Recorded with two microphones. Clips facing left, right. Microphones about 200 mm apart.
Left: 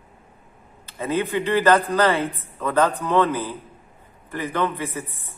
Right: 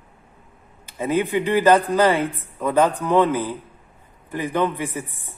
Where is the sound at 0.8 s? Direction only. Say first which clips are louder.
Right 2 dB; 15° right (ahead or behind).